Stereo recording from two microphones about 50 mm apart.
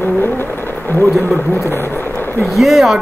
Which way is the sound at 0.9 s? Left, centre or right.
Left.